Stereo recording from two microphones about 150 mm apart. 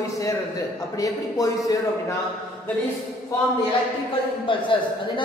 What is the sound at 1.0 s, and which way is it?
Speech, 25° left (ahead or behind).